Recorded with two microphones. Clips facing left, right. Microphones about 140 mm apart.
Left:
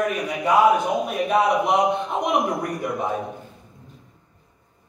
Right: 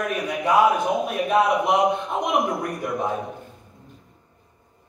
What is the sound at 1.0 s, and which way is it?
A man's voice, centre (ahead or behind).